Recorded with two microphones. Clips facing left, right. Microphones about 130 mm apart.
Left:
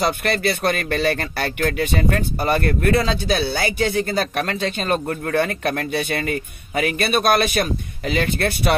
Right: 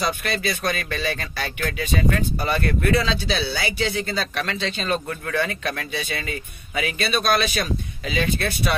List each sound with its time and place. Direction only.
0.0 s speech: 55° left (ahead or behind)